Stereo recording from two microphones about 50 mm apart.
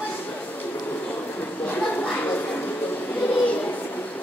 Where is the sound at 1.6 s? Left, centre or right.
Left.